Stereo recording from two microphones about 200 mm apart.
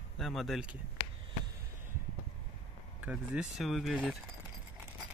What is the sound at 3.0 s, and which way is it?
Speech, 5° right (ahead or behind).